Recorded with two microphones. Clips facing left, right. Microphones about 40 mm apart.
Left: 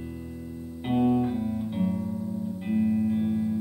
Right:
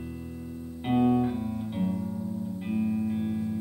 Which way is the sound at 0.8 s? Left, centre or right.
Centre.